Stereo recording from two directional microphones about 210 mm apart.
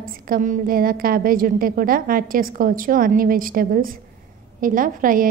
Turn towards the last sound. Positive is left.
turn(degrees=-40)  # may be behind; listen again after turning